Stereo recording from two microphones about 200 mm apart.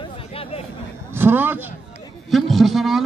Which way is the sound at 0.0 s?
30° left (ahead or behind).